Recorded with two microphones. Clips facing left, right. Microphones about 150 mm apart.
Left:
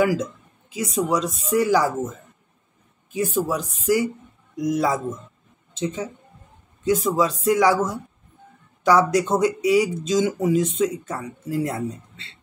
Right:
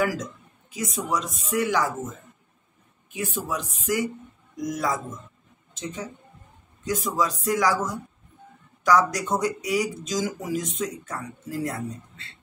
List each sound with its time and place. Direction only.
0.0 s speech: 30° left (ahead or behind)
3.1 s speech: 35° left (ahead or behind)